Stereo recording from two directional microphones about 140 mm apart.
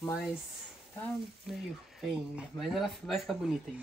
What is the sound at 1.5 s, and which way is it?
Speech, centre (ahead or behind).